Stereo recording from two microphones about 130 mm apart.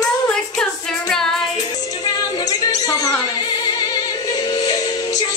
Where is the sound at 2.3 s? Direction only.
30° left (ahead or behind).